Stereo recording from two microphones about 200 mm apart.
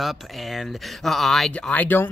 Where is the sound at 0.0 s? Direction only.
Centre (ahead or behind).